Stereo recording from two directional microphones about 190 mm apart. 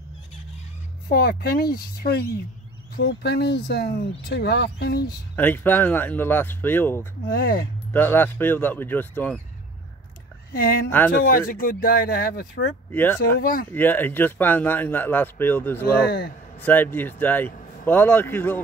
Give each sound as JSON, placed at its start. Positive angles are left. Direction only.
{"t": 1.0, "sound": "speech", "side_deg": 55}
{"t": 5.3, "sound": "a man's voice", "side_deg": 10}
{"t": 7.2, "sound": "speech", "side_deg": 50}
{"t": 7.9, "sound": "a man's voice", "side_deg": 10}
{"t": 11.2, "sound": "speech", "side_deg": 50}
{"t": 12.9, "sound": "a man's voice", "side_deg": 10}
{"t": 13.2, "sound": "speech", "side_deg": 50}
{"t": 13.7, "sound": "a man's voice", "side_deg": 10}